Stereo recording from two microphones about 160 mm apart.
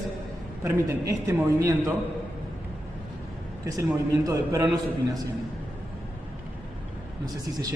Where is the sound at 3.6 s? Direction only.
20° right (ahead or behind).